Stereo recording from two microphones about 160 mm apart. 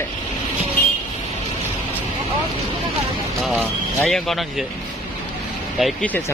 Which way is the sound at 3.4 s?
Centre (ahead or behind).